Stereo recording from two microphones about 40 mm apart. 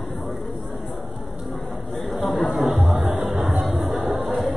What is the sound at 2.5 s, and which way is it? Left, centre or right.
Music, centre.